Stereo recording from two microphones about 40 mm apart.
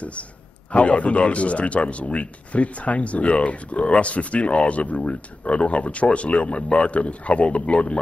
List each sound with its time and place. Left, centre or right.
0.7 s speech: left